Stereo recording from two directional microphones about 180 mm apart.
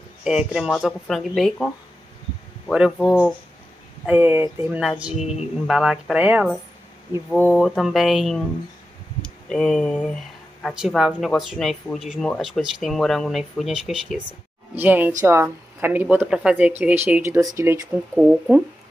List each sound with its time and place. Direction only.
0.2 s speech: 5° right (ahead or behind)
2.7 s speech: 5° right (ahead or behind)
18.1 s speech: 5° right (ahead or behind)